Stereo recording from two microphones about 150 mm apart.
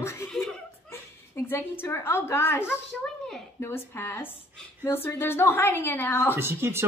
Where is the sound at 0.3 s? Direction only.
5° left (ahead or behind).